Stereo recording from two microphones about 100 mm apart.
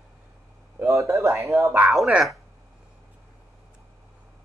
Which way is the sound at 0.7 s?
25° right (ahead or behind).